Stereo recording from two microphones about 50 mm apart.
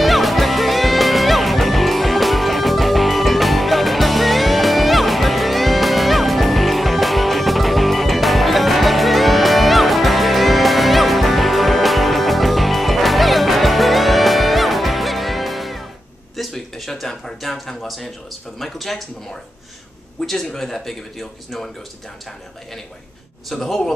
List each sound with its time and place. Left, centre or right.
0.0 s music: centre
16.3 s a sound: centre
20.2 s a man's voice: centre
23.5 s speech: centre